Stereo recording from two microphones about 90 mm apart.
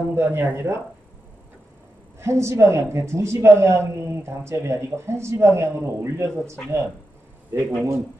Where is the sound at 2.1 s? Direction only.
30° right (ahead or behind).